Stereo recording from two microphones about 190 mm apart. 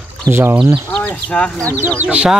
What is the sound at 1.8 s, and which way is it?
Chicken, 5° right (ahead or behind).